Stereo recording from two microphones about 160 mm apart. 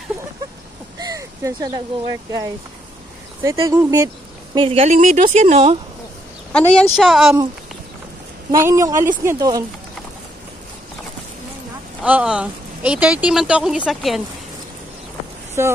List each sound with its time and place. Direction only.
0.9 s a sound: 20° right (ahead or behind)
3.4 s speech: 15° right (ahead or behind)
4.6 s speech: 35° right (ahead or behind)
4.9 s speech: 50° right (ahead or behind)
6.5 s speech: 5° left (ahead or behind)
8.5 s speech: 15° right (ahead or behind)
12.0 s speech: 5° right (ahead or behind)
15.6 s speech: 15° right (ahead or behind)